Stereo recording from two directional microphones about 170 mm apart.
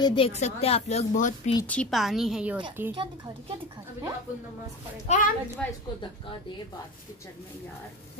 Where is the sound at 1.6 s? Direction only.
5° left (ahead or behind).